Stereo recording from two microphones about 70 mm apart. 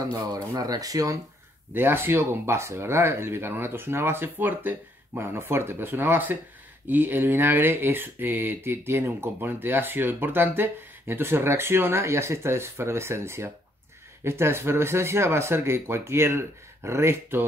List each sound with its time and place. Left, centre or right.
0.1 s speech: right
1.7 s speech: right